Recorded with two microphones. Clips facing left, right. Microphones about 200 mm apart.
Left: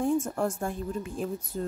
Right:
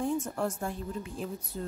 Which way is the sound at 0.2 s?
50° left (ahead or behind).